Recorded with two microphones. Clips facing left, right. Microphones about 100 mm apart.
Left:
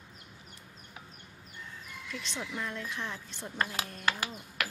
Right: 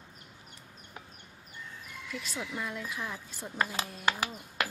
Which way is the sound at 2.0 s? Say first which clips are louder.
Right 1 dB; 5° right (ahead or behind).